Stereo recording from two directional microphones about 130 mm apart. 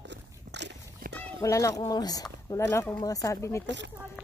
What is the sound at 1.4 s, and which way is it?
Speech, 25° left (ahead or behind).